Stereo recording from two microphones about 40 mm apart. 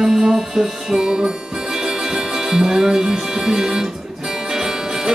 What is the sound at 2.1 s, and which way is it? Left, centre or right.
Speech, centre.